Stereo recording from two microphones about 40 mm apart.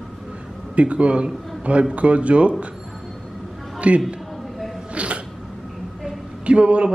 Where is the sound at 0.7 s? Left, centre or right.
Right.